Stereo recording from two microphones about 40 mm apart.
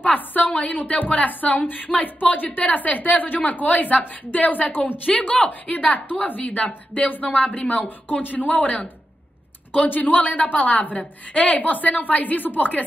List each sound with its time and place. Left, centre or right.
0.0 s a woman's voice: left
9.8 s a woman's voice: left